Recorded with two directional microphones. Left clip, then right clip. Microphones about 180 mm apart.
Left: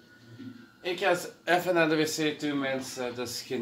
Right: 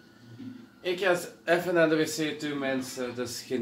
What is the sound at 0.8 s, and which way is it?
Speech, 50° left (ahead or behind).